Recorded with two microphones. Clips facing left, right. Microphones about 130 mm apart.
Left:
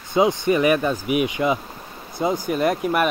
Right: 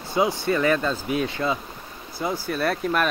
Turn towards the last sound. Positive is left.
turn(degrees=15)  # may be behind; listen again after turning